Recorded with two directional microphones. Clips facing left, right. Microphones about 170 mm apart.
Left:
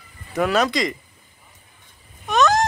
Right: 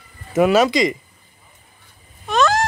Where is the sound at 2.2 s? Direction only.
15° left (ahead or behind).